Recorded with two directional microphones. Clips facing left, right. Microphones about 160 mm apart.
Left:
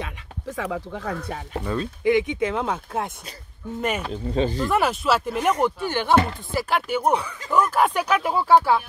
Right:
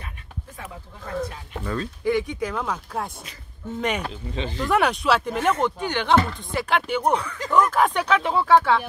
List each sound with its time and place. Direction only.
0.0 s speech: 90° left
1.7 s speech: 20° left (ahead or behind)
3.8 s speech: 5° left (ahead or behind)
4.1 s speech: 40° left (ahead or behind)
4.6 s speech: centre (ahead or behind)